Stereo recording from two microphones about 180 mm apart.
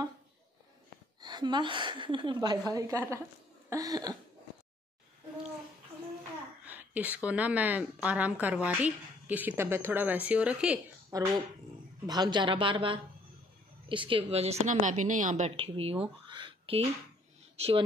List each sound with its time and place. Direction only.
1.2 s a woman's voice: 25° right (ahead or behind)
6.6 s a woman's voice: 10° right (ahead or behind)
11.1 s a woman's voice: 20° right (ahead or behind)